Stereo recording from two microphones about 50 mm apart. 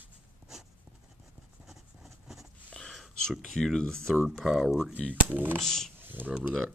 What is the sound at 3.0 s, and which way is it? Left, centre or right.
Speech, centre.